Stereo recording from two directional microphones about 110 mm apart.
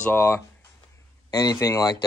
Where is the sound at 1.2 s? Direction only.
35° left (ahead or behind).